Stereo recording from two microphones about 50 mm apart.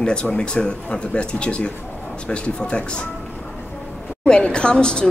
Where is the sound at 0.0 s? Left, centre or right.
Centre.